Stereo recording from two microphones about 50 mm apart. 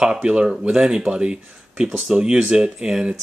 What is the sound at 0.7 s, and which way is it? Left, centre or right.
Speech, centre.